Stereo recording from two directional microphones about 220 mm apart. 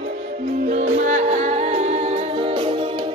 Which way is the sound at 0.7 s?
35° right (ahead or behind).